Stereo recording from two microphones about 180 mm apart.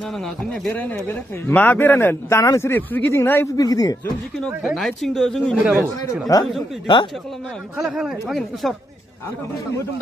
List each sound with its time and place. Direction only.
0.2 s speech: 5° left (ahead or behind)
4.4 s speech: centre (ahead or behind)
6.3 s speech: 20° left (ahead or behind)
7.7 s speech: centre (ahead or behind)